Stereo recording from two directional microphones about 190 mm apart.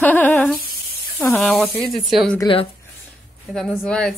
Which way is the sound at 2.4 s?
25° left (ahead or behind).